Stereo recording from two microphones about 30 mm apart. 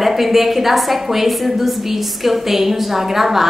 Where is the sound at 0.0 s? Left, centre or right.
Centre.